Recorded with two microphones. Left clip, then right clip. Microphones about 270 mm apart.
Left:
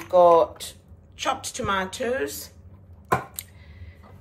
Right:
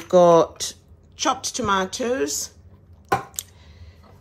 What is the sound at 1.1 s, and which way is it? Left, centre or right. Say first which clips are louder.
Speech: right 4 dB; centre.